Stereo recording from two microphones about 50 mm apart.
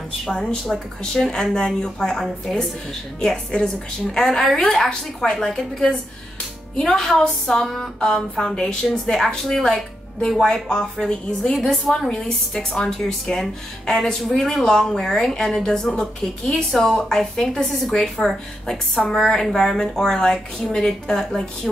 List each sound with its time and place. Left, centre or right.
0.3 s a woman's voice: centre
2.5 s a woman's voice: centre
3.2 s a woman's voice: centre
10.4 s a woman's voice: centre
11.5 s a woman's voice: centre